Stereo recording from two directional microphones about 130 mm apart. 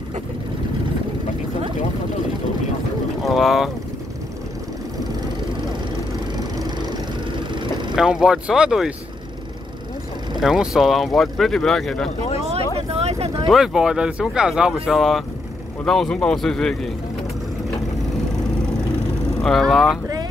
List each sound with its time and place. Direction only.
3.2 s boat: centre (ahead or behind)
7.9 s speech: 5° right (ahead or behind)
10.4 s speech: 5° right (ahead or behind)
12.7 s vehicle: 50° right (ahead or behind)
13.5 s speech: 5° right (ahead or behind)
19.4 s speech: centre (ahead or behind)